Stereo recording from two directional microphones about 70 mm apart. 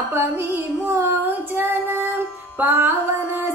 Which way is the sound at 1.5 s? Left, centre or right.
Right.